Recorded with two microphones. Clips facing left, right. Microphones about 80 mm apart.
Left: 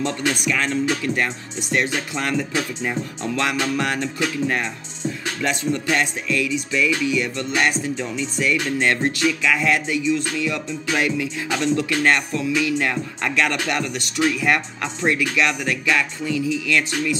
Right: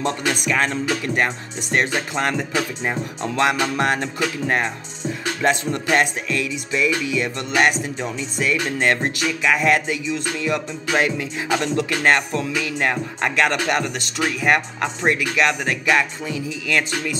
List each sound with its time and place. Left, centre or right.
0.0 s speech: right
2.5 s music: right
3.6 s speech: right
5.4 s music: right